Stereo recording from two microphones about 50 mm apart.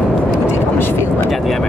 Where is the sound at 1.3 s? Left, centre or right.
Centre.